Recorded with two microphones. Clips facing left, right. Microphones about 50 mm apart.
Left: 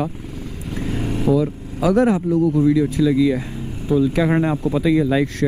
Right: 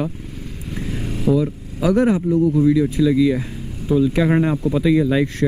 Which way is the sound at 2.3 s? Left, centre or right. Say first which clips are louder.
Right 1 dB; left.